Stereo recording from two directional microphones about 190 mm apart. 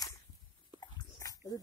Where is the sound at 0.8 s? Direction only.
20° left (ahead or behind).